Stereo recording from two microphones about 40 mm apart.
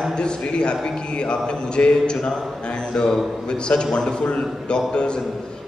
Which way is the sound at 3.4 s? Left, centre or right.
Left.